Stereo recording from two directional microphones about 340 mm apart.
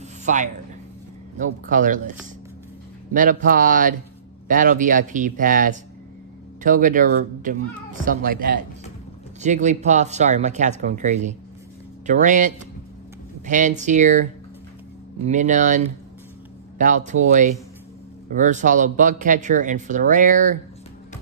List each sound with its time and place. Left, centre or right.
0.2 s a sound: right
1.4 s speech: right
15.2 s speech: right